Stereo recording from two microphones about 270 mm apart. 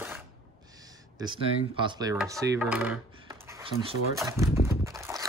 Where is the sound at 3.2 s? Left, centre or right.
Centre.